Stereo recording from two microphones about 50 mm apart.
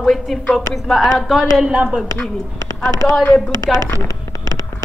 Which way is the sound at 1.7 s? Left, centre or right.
Right.